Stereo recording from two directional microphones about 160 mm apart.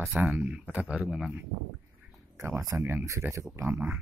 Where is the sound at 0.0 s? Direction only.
10° right (ahead or behind).